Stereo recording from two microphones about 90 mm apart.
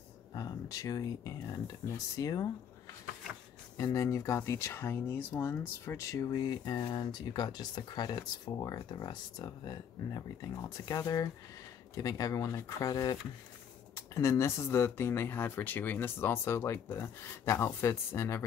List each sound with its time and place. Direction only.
0.3 s speech: 45° left (ahead or behind)
3.7 s speech: 40° left (ahead or behind)
14.1 s speech: 35° left (ahead or behind)